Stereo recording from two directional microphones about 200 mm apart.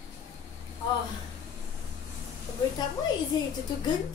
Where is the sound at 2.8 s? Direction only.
20° left (ahead or behind).